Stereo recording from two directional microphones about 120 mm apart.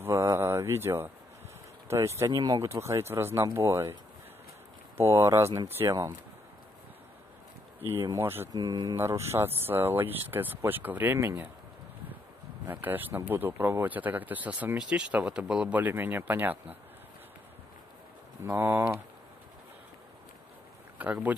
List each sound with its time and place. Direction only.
0.0 s a sound: 20° right (ahead or behind)
1.9 s speech: 25° right (ahead or behind)
2.7 s speech: 25° right (ahead or behind)
4.9 s speech: 20° right (ahead or behind)
7.8 s speech: 25° right (ahead or behind)
8.5 s a man's voice: 35° right (ahead or behind); by 11.5 s 20° right (ahead or behind)
12.6 s a man's voice: 15° right (ahead or behind)
18.4 s speech: 20° right (ahead or behind)
21.0 s a man's voice: 10° right (ahead or behind)